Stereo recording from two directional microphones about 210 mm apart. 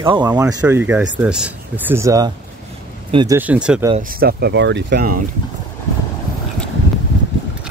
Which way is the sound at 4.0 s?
45° right (ahead or behind).